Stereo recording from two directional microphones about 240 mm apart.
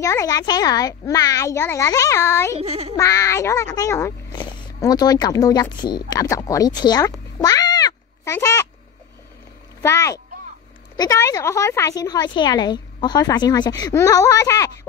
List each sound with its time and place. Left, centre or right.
0.0 s a woman's voice: centre
2.6 s a child's voice: right
3.0 s a child's voice: centre
9.8 s a child's voice: centre